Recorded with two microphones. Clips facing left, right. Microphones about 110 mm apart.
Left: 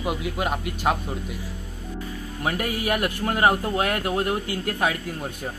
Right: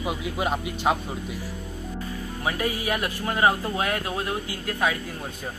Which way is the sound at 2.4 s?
55° left (ahead or behind).